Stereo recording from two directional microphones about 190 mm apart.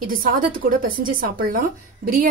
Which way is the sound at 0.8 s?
50° right (ahead or behind).